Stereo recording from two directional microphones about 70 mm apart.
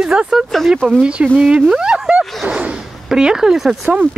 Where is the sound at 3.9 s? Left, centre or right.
Centre.